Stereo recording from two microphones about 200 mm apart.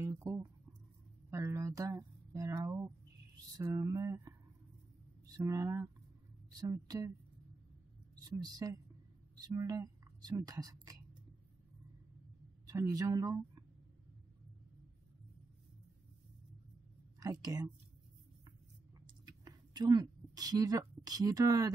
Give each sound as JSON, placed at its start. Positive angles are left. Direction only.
{"t": 0.0, "sound": "guitar", "side_deg": -15}
{"t": 1.3, "sound": "speech", "side_deg": -15}
{"t": 5.3, "sound": "a woman's voice", "side_deg": -15}
{"t": 8.2, "sound": "a woman's voice", "side_deg": -20}
{"t": 12.6, "sound": "speech", "side_deg": -15}
{"t": 17.2, "sound": "speech", "side_deg": -20}
{"t": 19.2, "sound": "a sound", "side_deg": -20}